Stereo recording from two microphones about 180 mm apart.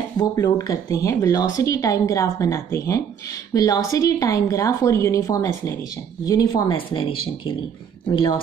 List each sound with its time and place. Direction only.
0.2 s a woman's voice: 20° left (ahead or behind)